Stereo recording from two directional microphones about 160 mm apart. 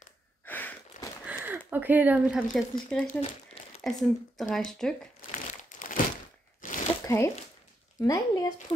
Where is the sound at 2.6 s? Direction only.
5° left (ahead or behind).